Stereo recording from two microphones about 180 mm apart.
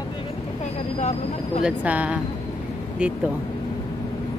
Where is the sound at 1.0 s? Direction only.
40° left (ahead or behind).